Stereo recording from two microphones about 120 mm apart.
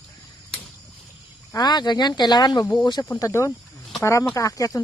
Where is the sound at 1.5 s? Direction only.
35° left (ahead or behind).